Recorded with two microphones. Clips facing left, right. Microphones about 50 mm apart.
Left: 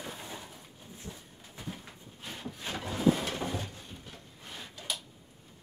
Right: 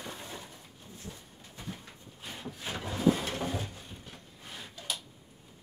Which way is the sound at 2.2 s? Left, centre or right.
Centre.